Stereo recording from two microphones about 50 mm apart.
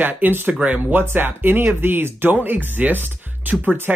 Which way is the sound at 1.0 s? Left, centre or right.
Right.